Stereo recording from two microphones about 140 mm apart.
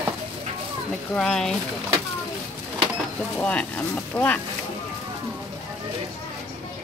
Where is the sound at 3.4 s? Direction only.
10° left (ahead or behind).